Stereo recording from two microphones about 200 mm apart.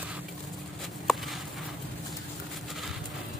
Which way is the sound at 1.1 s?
Centre (ahead or behind).